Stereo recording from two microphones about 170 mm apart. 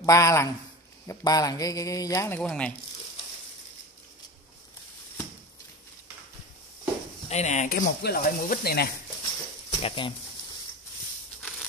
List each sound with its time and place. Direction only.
0.0 s speech: 15° left (ahead or behind)
7.2 s speech: 40° left (ahead or behind)
7.7 s speech: 70° left (ahead or behind)
9.2 s a sound: 30° left (ahead or behind)